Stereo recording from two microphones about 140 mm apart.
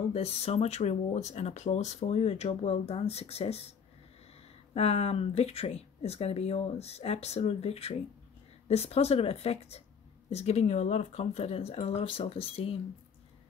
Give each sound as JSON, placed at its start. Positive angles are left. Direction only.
{"t": 0.1, "sound": "speech", "side_deg": 45}
{"t": 4.7, "sound": "speech", "side_deg": 50}